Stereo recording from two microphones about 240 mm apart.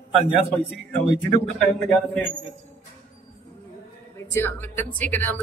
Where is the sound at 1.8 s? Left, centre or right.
Centre.